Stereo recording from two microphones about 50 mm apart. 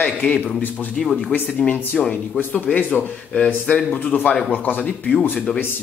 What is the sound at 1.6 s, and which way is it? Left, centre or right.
Speech, centre.